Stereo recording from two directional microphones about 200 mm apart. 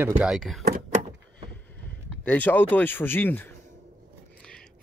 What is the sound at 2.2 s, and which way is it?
Speech, 10° left (ahead or behind).